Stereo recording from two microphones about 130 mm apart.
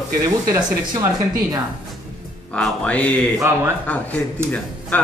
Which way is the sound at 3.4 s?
20° right (ahead or behind).